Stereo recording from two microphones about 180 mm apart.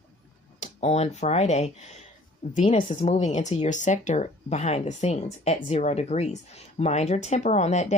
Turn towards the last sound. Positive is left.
turn(degrees=40)  # may be behind; listen again after turning